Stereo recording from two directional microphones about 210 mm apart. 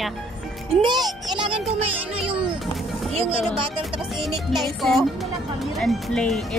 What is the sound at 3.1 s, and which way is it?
Music, 25° right (ahead or behind).